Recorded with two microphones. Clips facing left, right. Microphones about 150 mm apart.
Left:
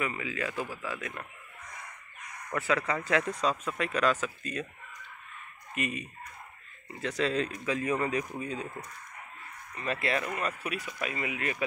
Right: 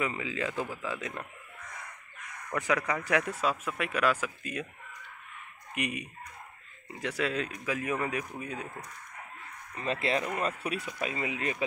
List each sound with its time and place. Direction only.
0.0 s speech: 25° right (ahead or behind)
2.5 s speech: 15° right (ahead or behind)
5.8 s speech: 15° right (ahead or behind)
9.8 s speech: 25° right (ahead or behind)